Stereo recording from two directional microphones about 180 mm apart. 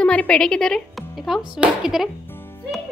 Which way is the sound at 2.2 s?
10° left (ahead or behind).